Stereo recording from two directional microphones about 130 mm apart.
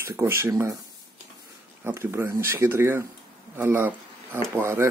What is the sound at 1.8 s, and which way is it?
Speech, 20° right (ahead or behind).